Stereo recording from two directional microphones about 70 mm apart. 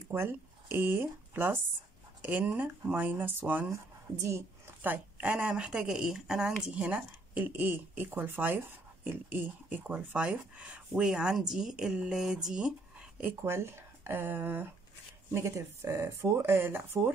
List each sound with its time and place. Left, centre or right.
0.1 s speech: right
3.7 s a woman's voice: right
4.8 s speech: right
13.4 s speech: right
15.3 s speech: right